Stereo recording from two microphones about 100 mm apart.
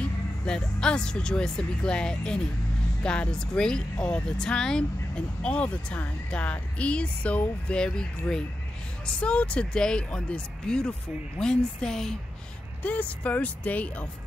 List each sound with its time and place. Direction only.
0.0 s speech: 10° left (ahead or behind)